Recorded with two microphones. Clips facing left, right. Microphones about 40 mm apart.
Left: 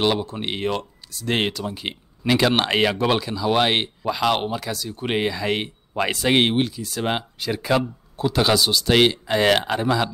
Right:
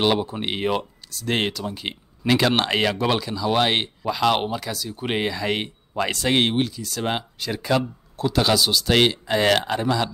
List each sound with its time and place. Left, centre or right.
0.0 s speech: centre
1.1 s speech: centre